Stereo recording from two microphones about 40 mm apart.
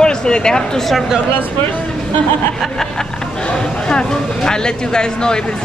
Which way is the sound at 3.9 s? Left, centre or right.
Centre.